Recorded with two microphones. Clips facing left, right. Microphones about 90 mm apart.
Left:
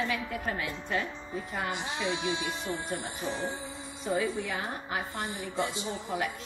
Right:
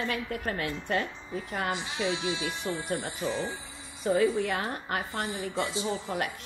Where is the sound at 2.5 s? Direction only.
60° right (ahead or behind).